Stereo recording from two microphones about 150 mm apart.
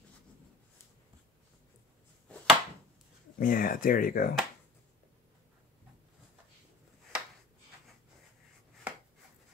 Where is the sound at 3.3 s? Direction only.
70° left (ahead or behind).